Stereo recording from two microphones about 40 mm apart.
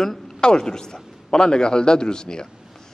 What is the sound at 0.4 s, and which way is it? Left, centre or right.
A man's voice, centre.